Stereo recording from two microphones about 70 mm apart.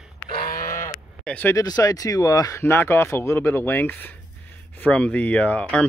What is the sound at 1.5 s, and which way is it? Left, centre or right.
Speech, left.